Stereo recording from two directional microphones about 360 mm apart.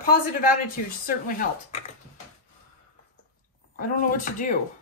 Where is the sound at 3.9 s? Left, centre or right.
Left.